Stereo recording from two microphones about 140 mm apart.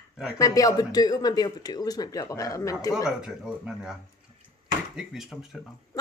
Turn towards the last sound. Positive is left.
turn(degrees=0)  # may be behind; listen again after turning